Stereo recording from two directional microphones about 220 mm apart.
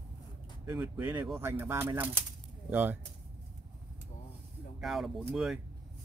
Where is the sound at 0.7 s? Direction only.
5° right (ahead or behind).